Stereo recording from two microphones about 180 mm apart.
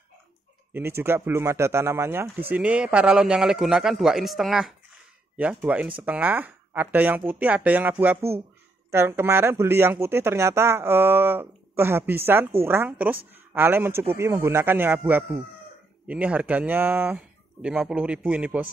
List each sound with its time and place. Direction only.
0.7 s speech: 10° right (ahead or behind)